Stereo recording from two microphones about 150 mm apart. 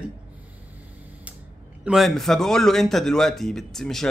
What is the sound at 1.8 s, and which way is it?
Speech, centre (ahead or behind).